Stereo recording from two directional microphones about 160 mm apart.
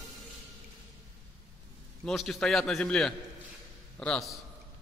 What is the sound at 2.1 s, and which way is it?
A man's voice, 5° left (ahead or behind).